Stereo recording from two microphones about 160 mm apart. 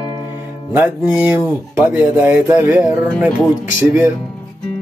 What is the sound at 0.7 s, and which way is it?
Speech, 10° right (ahead or behind).